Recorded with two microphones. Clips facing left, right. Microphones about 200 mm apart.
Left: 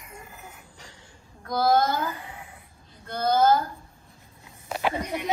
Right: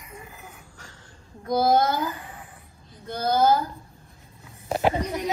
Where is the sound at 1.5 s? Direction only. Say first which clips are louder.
Right 2 dB; 20° right (ahead or behind).